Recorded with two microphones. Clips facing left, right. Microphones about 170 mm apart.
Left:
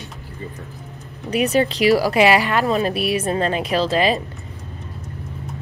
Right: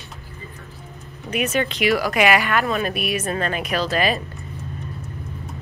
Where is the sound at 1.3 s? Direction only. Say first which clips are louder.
Left 4 dB; 35° left (ahead or behind).